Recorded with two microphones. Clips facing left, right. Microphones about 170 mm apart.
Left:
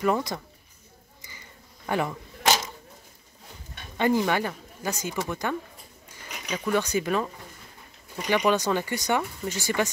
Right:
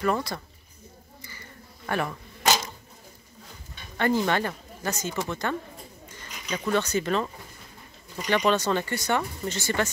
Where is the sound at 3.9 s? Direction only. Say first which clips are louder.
Left 1 dB; 15° left (ahead or behind).